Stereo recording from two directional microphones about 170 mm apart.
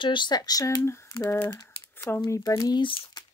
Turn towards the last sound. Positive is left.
turn(degrees=30)  # may be behind; listen again after turning